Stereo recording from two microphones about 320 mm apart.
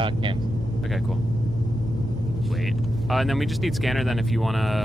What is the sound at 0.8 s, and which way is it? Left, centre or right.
Speech, centre.